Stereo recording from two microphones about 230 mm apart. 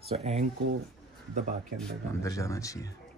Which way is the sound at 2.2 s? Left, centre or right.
Centre.